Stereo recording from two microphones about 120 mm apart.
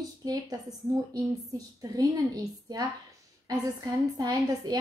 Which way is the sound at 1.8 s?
30° right (ahead or behind).